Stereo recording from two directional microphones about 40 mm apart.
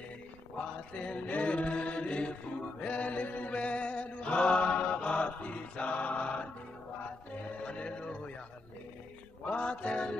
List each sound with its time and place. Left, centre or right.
0.6 s mantra: left
1.3 s chant: left
2.8 s mantra: left
7.6 s music: left
9.5 s music: left